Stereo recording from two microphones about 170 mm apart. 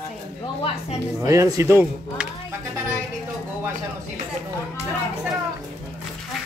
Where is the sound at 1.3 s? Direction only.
20° right (ahead or behind).